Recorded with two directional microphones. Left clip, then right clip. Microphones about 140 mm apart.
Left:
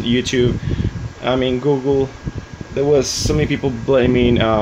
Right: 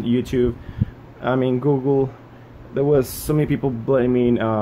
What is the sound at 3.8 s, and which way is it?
Speech, centre (ahead or behind).